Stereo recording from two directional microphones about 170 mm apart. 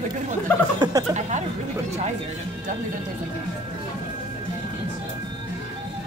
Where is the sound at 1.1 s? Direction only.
45° right (ahead or behind).